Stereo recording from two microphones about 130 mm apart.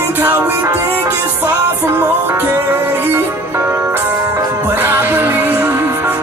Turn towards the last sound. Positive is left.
turn(degrees=-15)  # may be behind; listen again after turning